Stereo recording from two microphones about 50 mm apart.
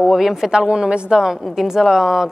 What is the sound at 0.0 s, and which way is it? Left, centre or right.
A woman's voice, centre.